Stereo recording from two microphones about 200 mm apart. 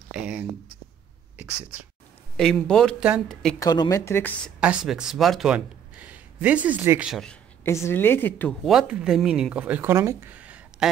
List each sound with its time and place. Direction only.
0.1 s speech: 5° right (ahead or behind)
1.4 s speech: 10° right (ahead or behind)
2.3 s speech: 5° left (ahead or behind)
3.5 s speech: 20° left (ahead or behind)
4.6 s speech: 5° right (ahead or behind)
7.6 s speech: 15° left (ahead or behind); by 10.9 s 5° right (ahead or behind)